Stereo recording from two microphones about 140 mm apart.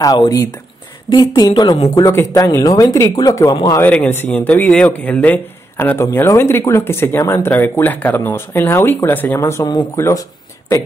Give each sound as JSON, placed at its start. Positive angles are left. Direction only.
{"t": 0.0, "sound": "a woman's voice", "side_deg": 25}
{"t": 3.8, "sound": "a man's voice", "side_deg": 10}